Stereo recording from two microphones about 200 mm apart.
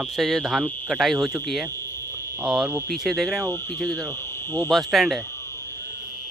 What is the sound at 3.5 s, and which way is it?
Speech, 10° left (ahead or behind).